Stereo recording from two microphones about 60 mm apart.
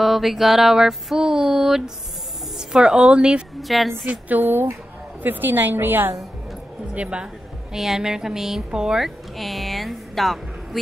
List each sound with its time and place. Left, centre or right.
0.0 s a sound: centre
3.6 s a woman's voice: centre
4.3 s a woman's voice: right
6.9 s speech: centre
7.7 s a sound: centre
8.6 s speech: centre